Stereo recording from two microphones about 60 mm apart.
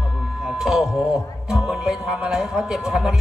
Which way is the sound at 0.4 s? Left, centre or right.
Centre.